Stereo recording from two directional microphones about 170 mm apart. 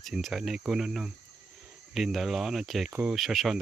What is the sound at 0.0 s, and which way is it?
Speech, centre (ahead or behind).